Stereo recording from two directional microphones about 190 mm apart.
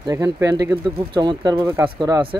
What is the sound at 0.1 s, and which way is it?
Speech, 15° right (ahead or behind).